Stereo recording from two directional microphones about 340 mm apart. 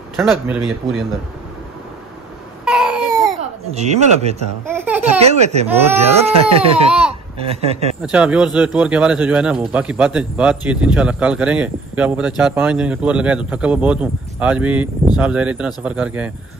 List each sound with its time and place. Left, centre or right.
0.2 s speech: centre
2.6 s baby cry: centre
3.7 s speech: centre
4.6 s speech: centre
5.3 s speech: centre
6.9 s speech: centre
7.3 s speech: centre
8.0 s speech: centre